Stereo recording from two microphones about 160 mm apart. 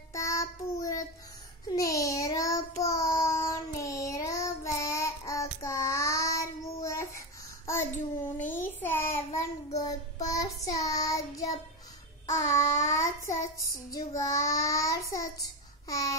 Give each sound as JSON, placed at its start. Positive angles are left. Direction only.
{"t": 0.1, "sound": "child singing", "side_deg": 20}
{"t": 8.4, "sound": "a sound", "side_deg": 15}
{"t": 9.8, "sound": "child singing", "side_deg": 20}